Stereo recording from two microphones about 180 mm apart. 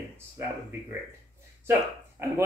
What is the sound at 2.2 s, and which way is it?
Speech, 15° right (ahead or behind).